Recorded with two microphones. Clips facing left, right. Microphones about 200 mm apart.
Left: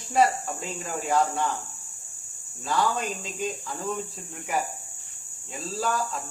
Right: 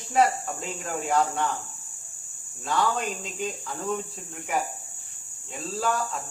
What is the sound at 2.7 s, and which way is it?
Speech, centre (ahead or behind).